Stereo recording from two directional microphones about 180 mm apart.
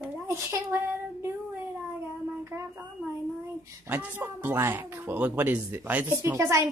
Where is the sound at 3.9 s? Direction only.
10° right (ahead or behind).